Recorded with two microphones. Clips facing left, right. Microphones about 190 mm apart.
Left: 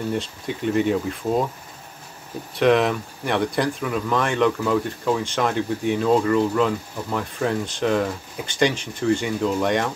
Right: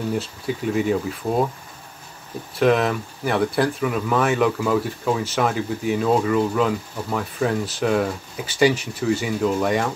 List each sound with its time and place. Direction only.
0.1 s speech: 5° right (ahead or behind)
2.5 s speech: centre (ahead or behind)